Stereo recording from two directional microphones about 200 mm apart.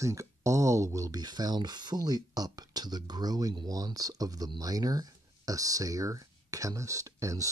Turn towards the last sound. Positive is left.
turn(degrees=-15)  # may be behind; listen again after turning